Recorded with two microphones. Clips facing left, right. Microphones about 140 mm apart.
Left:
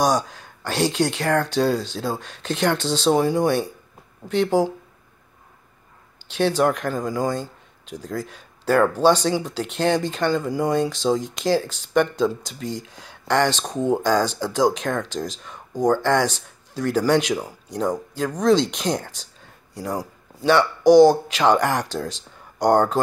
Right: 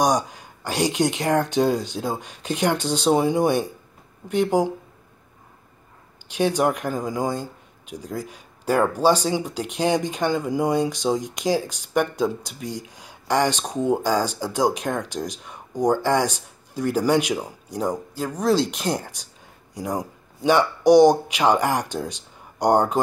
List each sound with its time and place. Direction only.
0.0 s speech: 10° right (ahead or behind)
6.3 s speech: 10° right (ahead or behind)